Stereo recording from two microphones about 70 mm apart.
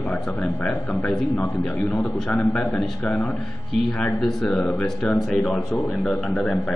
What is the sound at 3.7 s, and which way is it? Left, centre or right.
Speech, centre.